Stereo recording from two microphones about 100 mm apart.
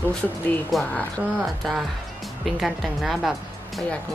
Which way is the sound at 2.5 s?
5° right (ahead or behind).